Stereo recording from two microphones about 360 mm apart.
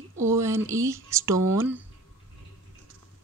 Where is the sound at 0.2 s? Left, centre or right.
Centre.